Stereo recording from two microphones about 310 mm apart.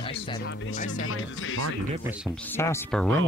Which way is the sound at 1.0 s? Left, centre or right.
Left.